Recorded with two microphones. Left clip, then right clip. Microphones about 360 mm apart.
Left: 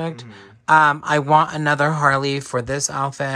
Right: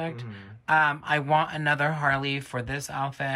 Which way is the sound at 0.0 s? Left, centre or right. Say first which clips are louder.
Left 5 dB; centre.